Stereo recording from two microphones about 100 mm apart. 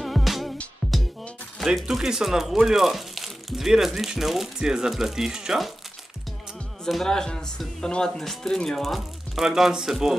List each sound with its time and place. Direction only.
0.0 s music: centre (ahead or behind)
1.6 s speech: centre (ahead or behind)
6.8 s speech: 5° left (ahead or behind)